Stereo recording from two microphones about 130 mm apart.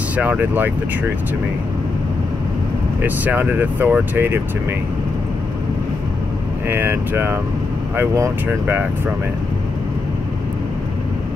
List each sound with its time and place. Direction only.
0.1 s speech: 10° right (ahead or behind)
3.0 s speech: 15° right (ahead or behind)
6.7 s speech: 15° right (ahead or behind)